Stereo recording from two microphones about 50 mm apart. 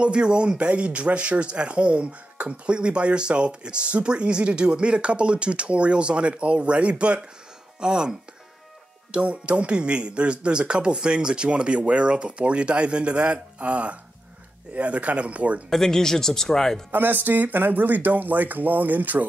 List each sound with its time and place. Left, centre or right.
0.0 s speech: centre
15.7 s speech: centre
16.9 s speech: right